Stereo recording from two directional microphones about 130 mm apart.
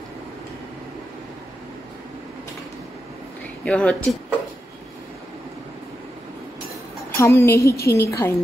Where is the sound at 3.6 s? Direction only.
5° left (ahead or behind).